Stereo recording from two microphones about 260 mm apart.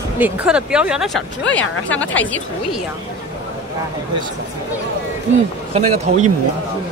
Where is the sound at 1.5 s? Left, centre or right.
Left.